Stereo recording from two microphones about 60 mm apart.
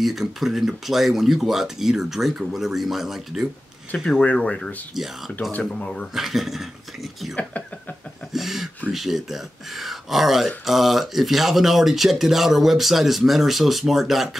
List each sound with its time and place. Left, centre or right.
0.0 s speech: centre
3.9 s speech: centre
4.9 s speech: centre
5.6 s speech: centre
6.1 s speech: centre
8.3 s a sound: centre
8.9 s speech: centre